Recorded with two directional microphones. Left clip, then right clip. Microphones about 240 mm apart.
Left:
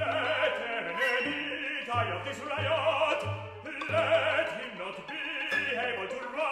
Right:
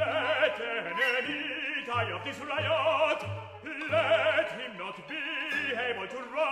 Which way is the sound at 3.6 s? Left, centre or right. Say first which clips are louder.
Right 1 dB; right.